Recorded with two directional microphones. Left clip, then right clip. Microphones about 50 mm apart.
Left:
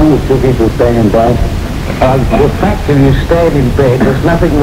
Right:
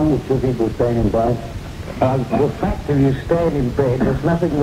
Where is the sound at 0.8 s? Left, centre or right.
Centre.